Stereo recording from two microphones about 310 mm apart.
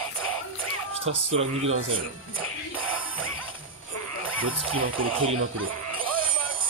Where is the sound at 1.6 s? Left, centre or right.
Right.